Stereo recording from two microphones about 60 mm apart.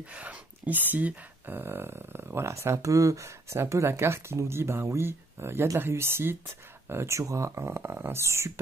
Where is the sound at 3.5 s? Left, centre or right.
Right.